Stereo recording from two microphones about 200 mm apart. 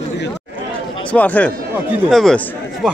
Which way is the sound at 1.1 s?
5° left (ahead or behind).